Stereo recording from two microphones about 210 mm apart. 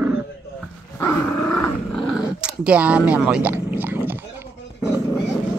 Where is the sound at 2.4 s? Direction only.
5° right (ahead or behind).